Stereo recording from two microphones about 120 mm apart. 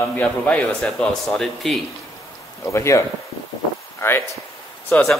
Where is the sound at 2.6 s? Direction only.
25° left (ahead or behind).